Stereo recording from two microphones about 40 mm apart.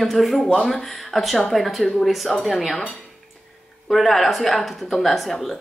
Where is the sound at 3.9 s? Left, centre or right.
Centre.